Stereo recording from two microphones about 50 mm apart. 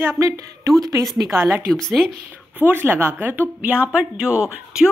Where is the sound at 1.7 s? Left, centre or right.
Centre.